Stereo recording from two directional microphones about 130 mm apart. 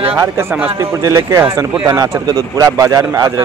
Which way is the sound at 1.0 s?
25° right (ahead or behind).